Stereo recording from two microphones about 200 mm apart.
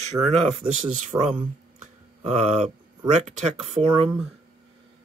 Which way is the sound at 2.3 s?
35° right (ahead or behind).